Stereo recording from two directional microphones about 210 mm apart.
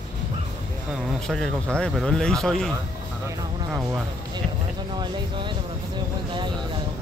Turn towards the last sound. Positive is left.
turn(degrees=-20)  # may be behind; listen again after turning